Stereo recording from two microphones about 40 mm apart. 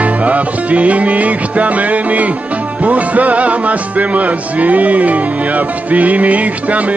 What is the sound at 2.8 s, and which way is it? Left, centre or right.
Music, right.